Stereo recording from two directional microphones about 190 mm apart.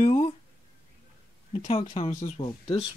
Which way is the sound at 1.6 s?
30° left (ahead or behind).